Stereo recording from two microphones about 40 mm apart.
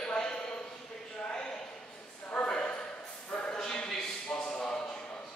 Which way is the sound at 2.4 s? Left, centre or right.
Left.